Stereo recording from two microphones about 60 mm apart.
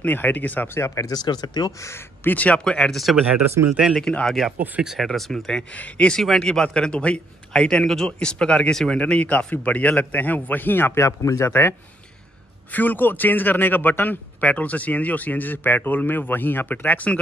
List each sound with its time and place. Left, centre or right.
0.0 s a man's voice: left
0.7 s speech: left
1.0 s speech: left
1.9 s speech: left
2.3 s a man's voice: left
2.9 s a man's voice: centre
6.2 s a man's voice: centre
9.0 s a man's voice: left
11.0 s speech: left
12.7 s a man's voice: left